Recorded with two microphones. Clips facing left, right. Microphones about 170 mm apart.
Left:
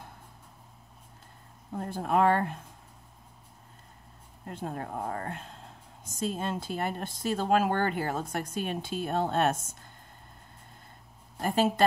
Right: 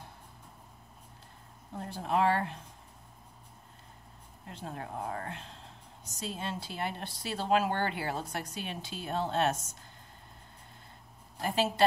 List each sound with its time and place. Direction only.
1.8 s a woman's voice: 50° left (ahead or behind)
4.5 s a woman's voice: 50° left (ahead or behind)
11.4 s a woman's voice: 50° left (ahead or behind)